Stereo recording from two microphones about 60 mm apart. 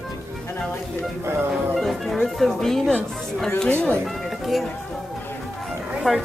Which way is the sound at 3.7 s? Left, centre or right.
Centre.